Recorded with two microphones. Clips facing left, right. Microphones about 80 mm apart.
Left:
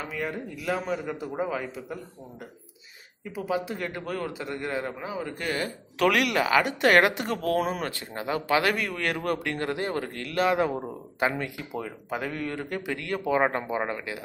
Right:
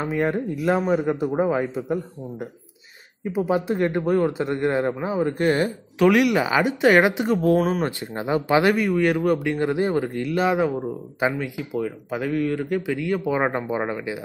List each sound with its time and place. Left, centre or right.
0.0 s a man's voice: right
3.3 s speech: right
5.9 s a man's voice: centre
8.7 s speech: centre